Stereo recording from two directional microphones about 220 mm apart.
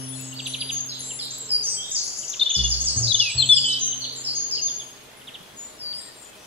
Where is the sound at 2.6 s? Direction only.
25° right (ahead or behind).